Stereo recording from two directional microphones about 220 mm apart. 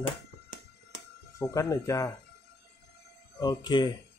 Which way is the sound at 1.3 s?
15° left (ahead or behind).